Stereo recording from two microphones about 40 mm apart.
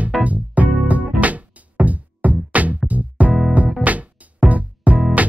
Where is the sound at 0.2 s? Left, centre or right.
Right.